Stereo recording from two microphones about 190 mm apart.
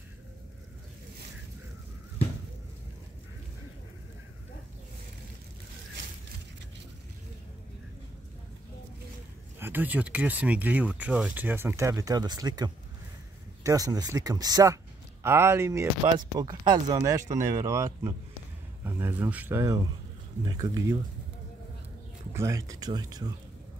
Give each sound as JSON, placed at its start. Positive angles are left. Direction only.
{"t": 9.6, "sound": "speech", "side_deg": -10}
{"t": 18.9, "sound": "speech", "side_deg": -10}
{"t": 22.3, "sound": "speech", "side_deg": -15}